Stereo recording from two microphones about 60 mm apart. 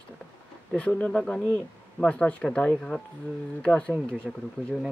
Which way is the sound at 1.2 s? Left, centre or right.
Centre.